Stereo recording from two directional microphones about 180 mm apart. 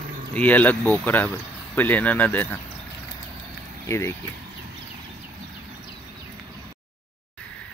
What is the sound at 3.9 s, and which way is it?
Speech, 15° left (ahead or behind).